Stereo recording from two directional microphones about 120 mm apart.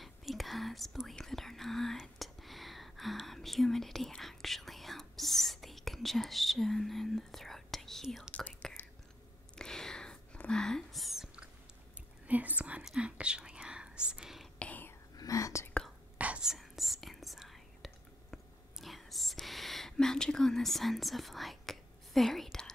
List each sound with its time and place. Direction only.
0.0 s whispering: centre (ahead or behind)
12.3 s whispering: 10° right (ahead or behind)
14.6 s whispering: 15° left (ahead or behind)
15.1 s whispering: 25° left (ahead or behind)
16.2 s whispering: 10° right (ahead or behind)